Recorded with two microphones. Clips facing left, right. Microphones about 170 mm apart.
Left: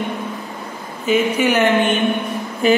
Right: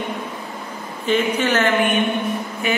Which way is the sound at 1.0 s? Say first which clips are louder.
Left 3 dB; 10° left (ahead or behind).